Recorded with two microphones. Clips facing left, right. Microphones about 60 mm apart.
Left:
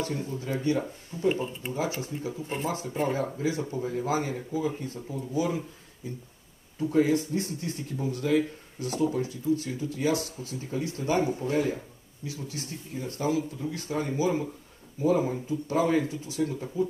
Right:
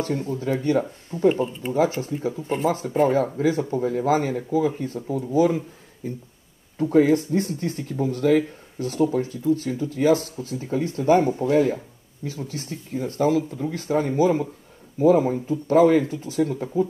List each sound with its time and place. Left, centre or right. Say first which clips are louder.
0.0 s speech: right 7 dB; right
1.3 s speech: right 6 dB; centre
1.7 s speech: right 10 dB; right
2.4 s speech: right 9 dB; centre
3.3 s speech: right 7 dB; right